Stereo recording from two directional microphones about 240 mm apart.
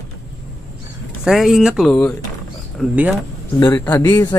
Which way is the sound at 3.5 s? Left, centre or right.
Centre.